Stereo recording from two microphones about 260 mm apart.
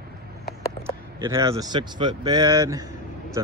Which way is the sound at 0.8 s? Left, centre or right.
Centre.